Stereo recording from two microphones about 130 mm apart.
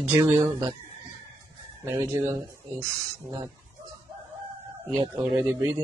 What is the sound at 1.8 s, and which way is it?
Speech, 20° right (ahead or behind).